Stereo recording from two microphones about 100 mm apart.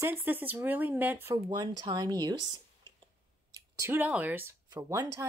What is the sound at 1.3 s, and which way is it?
Speech, 45° right (ahead or behind).